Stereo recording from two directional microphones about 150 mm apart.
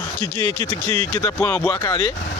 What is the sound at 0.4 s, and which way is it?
Speech, 15° left (ahead or behind).